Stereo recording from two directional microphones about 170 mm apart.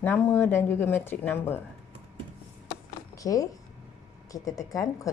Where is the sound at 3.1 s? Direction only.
20° left (ahead or behind).